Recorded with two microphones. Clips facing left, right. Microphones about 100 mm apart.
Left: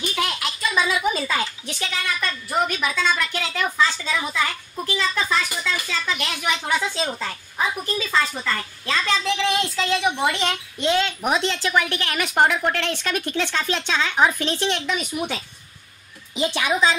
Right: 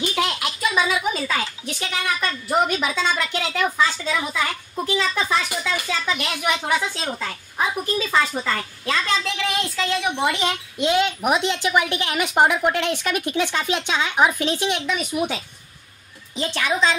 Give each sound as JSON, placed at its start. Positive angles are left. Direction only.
{"t": 0.1, "sound": "a sound", "side_deg": -20}
{"t": 0.6, "sound": "a sound", "side_deg": -10}
{"t": 1.1, "sound": "speech", "side_deg": 5}
{"t": 1.7, "sound": "speech", "side_deg": -15}
{"t": 4.7, "sound": "speech", "side_deg": -20}
{"t": 16.3, "sound": "a woman's voice", "side_deg": 15}